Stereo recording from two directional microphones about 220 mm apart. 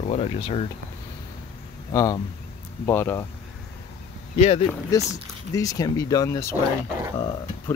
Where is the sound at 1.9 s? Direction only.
15° left (ahead or behind).